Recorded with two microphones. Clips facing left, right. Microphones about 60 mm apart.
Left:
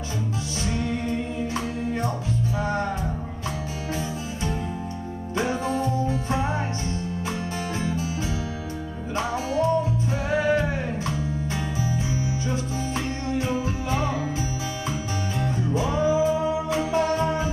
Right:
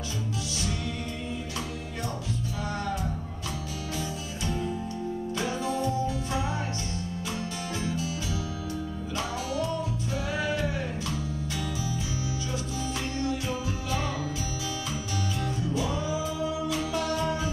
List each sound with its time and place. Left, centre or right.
5.4 s music: left
7.8 s music: left
10.3 s music: left
13.5 s music: left
15.4 s music: left